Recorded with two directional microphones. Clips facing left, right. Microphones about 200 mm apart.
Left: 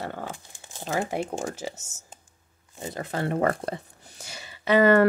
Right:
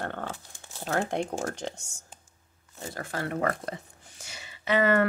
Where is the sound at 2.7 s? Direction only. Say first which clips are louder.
Left 4 dB; 20° left (ahead or behind).